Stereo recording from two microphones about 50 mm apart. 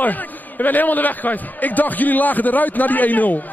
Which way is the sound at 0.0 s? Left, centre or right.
Left.